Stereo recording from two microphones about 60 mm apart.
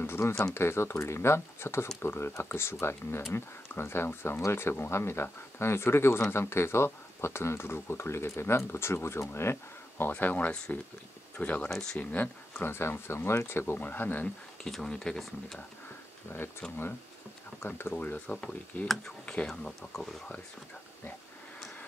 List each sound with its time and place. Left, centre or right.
0.0 s speech: left
10.1 s speech: left
11.7 s speech: centre
12.0 s speech: left
12.6 s speech: left
13.7 s speech: left
14.7 s speech: centre
16.6 s speech: centre
17.6 s speech: left
17.9 s speech: left
19.4 s speech: centre